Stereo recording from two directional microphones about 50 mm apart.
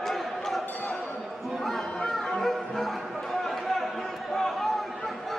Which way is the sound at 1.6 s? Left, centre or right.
Centre.